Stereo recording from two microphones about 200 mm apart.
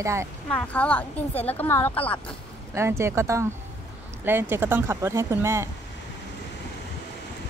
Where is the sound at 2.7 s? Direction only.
15° right (ahead or behind).